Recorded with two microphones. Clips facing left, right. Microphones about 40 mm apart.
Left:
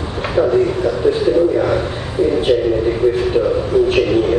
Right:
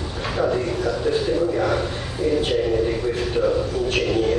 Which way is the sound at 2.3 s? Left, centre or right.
Centre.